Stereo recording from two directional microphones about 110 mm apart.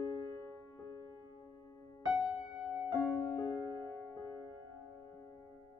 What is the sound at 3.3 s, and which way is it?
Music, 20° left (ahead or behind).